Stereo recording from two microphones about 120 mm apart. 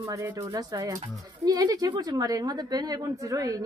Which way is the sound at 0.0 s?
25° right (ahead or behind).